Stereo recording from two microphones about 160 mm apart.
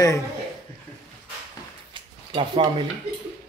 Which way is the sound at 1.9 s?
30° right (ahead or behind).